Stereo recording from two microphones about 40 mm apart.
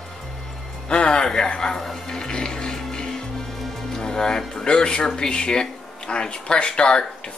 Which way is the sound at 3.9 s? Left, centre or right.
Centre.